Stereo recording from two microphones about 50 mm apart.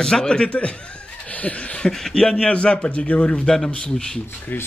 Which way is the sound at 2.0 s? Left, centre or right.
Centre.